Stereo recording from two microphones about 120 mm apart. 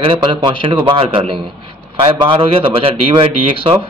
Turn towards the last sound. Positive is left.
turn(degrees=-50)  # may be behind; listen again after turning